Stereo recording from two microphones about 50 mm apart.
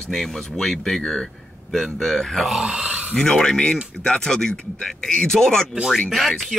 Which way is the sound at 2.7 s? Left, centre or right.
Right.